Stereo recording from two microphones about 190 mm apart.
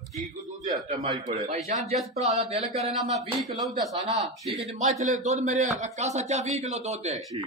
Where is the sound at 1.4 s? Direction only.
35° right (ahead or behind).